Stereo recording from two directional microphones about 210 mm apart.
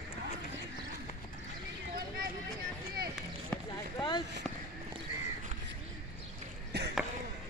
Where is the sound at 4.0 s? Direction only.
20° left (ahead or behind).